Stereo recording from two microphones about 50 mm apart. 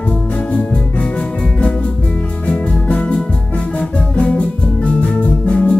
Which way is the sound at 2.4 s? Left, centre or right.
Left.